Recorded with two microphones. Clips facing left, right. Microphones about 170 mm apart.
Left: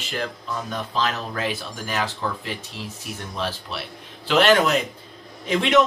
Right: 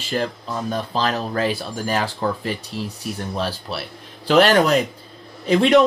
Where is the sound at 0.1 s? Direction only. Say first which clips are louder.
Right 5 dB; 35° right (ahead or behind).